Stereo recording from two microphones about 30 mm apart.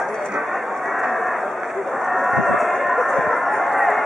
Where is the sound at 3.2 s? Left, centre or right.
Centre.